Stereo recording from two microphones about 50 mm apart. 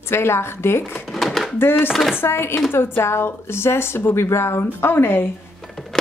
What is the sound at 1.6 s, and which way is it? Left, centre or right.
A woman's voice, left.